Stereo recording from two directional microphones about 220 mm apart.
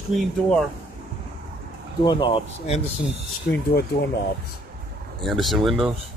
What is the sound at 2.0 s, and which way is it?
Speech, 20° left (ahead or behind).